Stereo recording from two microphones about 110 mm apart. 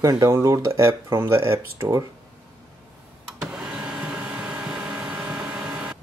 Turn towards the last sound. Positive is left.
turn(degrees=-10)  # may be behind; listen again after turning